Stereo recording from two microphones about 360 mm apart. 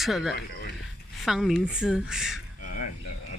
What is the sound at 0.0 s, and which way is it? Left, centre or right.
Speech, centre.